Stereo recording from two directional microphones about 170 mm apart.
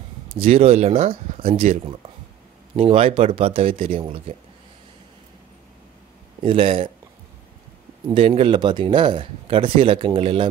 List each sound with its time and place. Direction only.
0.3 s speech: 35° right (ahead or behind)
6.4 s speech: 30° right (ahead or behind)
8.1 s speech: 35° right (ahead or behind)